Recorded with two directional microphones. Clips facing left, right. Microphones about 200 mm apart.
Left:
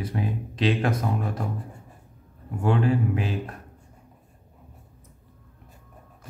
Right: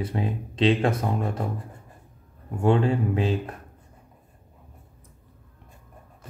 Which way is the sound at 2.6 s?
25° right (ahead or behind).